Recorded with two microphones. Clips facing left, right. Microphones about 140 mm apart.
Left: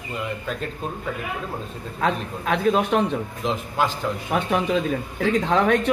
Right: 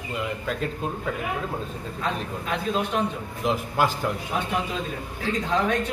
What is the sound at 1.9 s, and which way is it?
A man's voice, 65° left (ahead or behind).